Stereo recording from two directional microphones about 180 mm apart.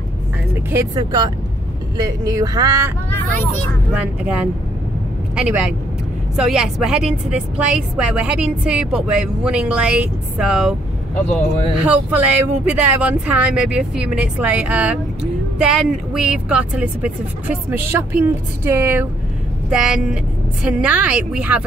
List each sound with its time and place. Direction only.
0.7 s speech: 15° right (ahead or behind)
4.2 s a woman's voice: 5° right (ahead or behind)